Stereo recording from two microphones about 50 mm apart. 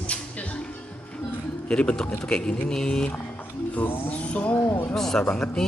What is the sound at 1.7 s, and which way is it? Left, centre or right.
Speech, centre.